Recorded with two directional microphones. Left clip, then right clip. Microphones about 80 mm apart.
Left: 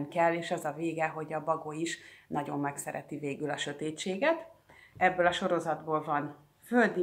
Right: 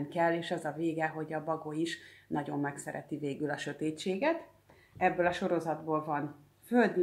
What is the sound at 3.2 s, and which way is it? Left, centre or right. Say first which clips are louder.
Speech: left 1 dB; right.